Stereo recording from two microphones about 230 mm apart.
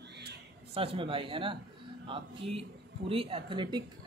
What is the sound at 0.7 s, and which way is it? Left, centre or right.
Speech, right.